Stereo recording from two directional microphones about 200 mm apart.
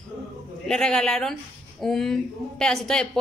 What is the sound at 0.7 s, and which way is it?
A woman's voice, 5° left (ahead or behind).